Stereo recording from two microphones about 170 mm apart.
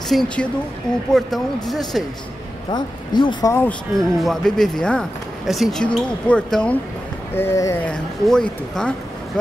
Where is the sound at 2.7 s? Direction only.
25° left (ahead or behind).